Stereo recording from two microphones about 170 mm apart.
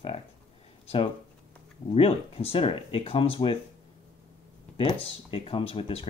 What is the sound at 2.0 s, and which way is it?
Speech, 35° left (ahead or behind).